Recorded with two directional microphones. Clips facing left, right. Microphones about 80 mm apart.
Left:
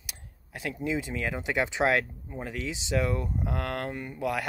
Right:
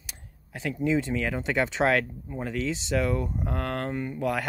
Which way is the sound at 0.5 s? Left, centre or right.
Centre.